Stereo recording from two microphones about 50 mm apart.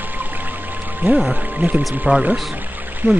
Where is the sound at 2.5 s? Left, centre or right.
Right.